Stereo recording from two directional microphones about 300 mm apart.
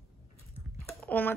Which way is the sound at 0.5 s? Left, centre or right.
Centre.